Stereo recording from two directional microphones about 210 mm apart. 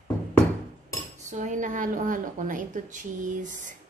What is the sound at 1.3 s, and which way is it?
A woman's voice, 35° right (ahead or behind).